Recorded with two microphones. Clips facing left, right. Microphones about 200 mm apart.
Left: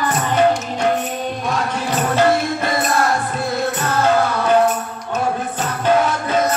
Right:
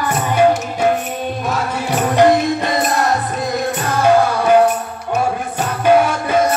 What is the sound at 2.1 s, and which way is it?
Music, 15° right (ahead or behind).